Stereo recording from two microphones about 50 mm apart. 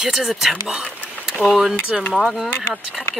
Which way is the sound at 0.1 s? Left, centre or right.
Centre.